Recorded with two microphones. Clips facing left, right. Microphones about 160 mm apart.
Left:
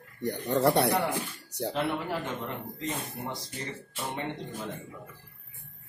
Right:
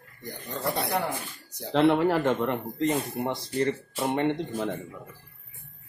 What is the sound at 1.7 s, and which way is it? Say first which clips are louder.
Speech: right 11 dB; 90° right.